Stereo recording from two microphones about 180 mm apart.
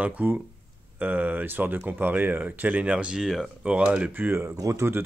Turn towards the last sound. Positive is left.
turn(degrees=-15)  # may be behind; listen again after turning